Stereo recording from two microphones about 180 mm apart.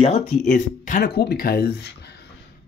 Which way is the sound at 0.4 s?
45° left (ahead or behind).